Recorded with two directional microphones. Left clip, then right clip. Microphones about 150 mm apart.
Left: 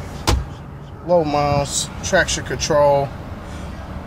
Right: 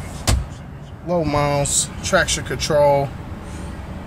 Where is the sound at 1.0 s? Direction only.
30° right (ahead or behind).